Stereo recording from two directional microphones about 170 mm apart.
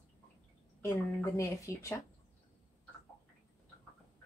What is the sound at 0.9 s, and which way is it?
A woman's voice, 20° left (ahead or behind).